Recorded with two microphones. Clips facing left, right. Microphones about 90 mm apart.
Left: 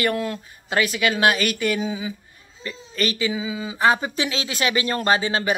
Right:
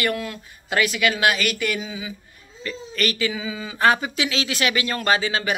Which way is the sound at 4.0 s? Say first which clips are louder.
Even; 30° left (ahead or behind).